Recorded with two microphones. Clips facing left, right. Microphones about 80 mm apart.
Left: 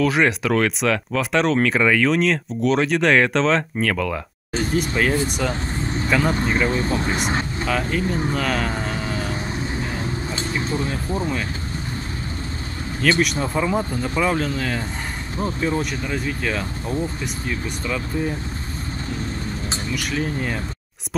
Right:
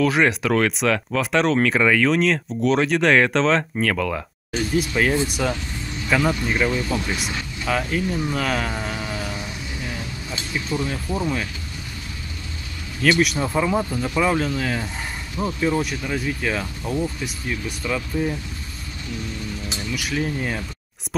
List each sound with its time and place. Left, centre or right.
0.0 s speech: centre
5.5 s vehicle: left
6.2 s speech: left
7.6 s speech: centre
8.0 s speech: left
8.4 s speech: centre
9.2 s vehicle: left
13.0 s speech: centre
19.0 s vehicle: left
20.0 s speech: centre